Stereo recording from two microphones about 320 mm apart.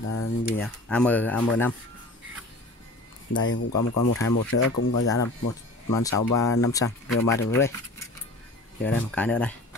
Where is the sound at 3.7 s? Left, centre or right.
Left.